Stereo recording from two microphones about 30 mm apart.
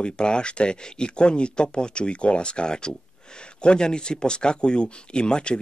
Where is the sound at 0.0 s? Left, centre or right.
Left.